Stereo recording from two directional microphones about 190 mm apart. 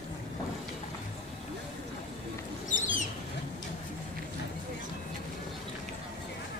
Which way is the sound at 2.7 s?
40° left (ahead or behind).